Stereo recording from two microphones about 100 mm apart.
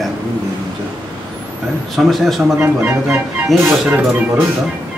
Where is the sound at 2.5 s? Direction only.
20° right (ahead or behind).